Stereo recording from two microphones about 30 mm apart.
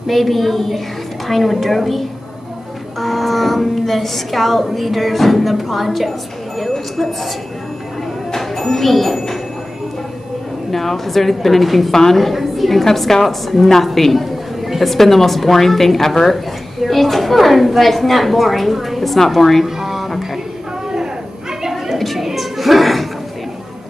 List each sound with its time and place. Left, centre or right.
0.0 s a woman's voice: centre
8.4 s speech: centre
10.7 s a woman's voice: centre
11.9 s a woman's voice: centre
12.2 s a woman's voice: centre
19.6 s a sound: centre
21.9 s a sound: centre